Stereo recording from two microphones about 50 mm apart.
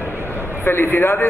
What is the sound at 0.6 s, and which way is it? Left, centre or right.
Speech, left.